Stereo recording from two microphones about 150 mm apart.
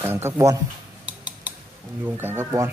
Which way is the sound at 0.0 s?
15° right (ahead or behind).